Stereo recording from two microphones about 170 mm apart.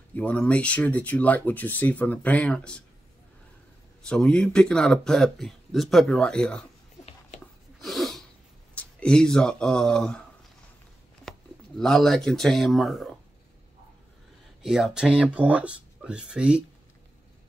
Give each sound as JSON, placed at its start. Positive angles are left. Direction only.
{"t": 0.1, "sound": "speech", "side_deg": 10}
{"t": 4.0, "sound": "speech", "side_deg": 5}
{"t": 7.3, "sound": "a sound", "side_deg": 40}
{"t": 7.8, "sound": "sneeze", "side_deg": 0}
{"t": 8.7, "sound": "speech", "side_deg": 5}
{"t": 11.8, "sound": "speech", "side_deg": 0}
{"t": 14.6, "sound": "speech", "side_deg": -5}